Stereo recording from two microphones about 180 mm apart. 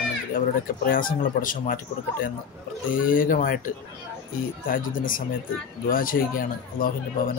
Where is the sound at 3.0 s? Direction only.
50° left (ahead or behind).